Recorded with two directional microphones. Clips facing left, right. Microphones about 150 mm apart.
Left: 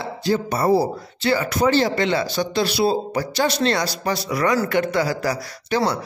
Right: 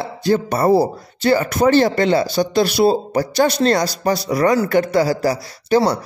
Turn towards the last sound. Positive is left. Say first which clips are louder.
# right 6 dB
turn(degrees=-35)  # may be behind; listen again after turning